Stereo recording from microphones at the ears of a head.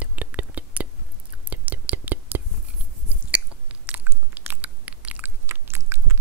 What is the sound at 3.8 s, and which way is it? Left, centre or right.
Biting, right.